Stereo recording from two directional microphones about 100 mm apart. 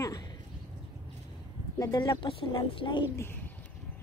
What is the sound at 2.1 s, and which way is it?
Speech, 60° left (ahead or behind).